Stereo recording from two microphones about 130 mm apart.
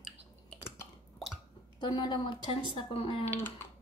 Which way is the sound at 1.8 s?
35° left (ahead or behind).